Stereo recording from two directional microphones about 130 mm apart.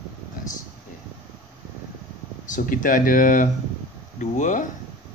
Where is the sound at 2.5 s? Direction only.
90° left.